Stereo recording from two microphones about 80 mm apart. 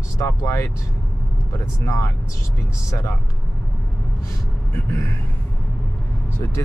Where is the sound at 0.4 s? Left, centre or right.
Left.